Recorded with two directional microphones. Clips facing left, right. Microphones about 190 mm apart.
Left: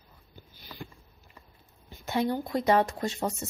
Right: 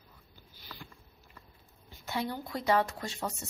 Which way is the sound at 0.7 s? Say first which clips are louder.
Left 6 dB; 15° left (ahead or behind).